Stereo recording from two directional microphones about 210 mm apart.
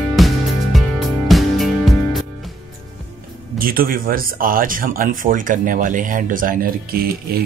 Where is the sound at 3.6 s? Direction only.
45° right (ahead or behind).